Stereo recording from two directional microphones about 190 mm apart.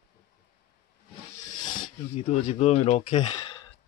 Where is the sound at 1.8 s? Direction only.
35° left (ahead or behind).